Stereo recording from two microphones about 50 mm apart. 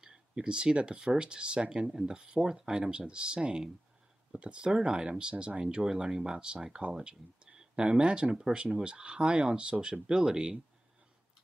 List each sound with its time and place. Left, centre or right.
0.0 s speech: centre